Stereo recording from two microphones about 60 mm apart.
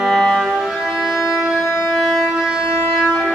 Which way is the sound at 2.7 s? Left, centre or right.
Left.